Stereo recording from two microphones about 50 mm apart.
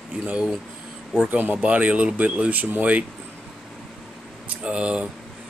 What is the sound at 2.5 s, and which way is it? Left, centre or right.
Speech, right.